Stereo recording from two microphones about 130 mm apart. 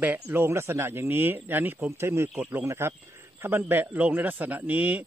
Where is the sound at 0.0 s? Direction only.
15° right (ahead or behind).